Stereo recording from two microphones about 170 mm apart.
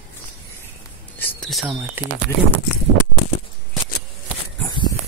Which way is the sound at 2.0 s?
15° right (ahead or behind).